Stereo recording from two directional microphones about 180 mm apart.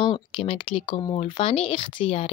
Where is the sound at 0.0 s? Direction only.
30° left (ahead or behind).